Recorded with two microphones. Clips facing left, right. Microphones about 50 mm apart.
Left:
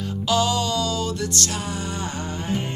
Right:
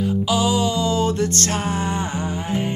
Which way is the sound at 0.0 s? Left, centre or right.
Centre.